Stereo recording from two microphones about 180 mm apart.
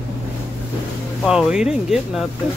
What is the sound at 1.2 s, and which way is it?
Speech, centre (ahead or behind).